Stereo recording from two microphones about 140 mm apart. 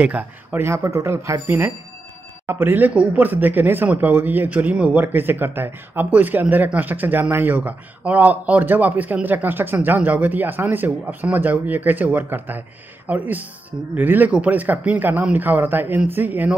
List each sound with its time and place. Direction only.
0.0 s speech: 10° right (ahead or behind)